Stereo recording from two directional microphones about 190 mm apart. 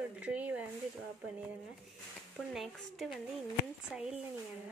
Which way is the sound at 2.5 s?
Centre (ahead or behind).